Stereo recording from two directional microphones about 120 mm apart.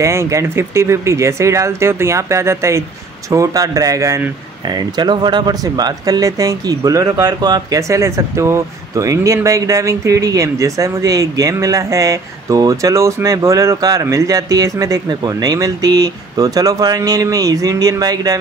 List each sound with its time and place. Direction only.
0.0 s speech: 25° right (ahead or behind)
4.6 s speech: 35° right (ahead or behind)